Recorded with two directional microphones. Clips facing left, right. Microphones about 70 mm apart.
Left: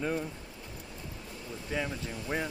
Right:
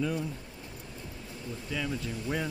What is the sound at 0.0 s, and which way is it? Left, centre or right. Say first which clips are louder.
Speech: right 1 dB; left.